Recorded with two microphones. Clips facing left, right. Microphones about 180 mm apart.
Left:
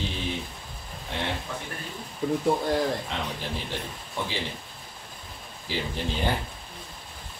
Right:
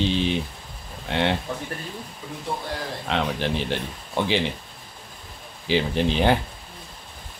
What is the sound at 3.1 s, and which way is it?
Speech, 80° right.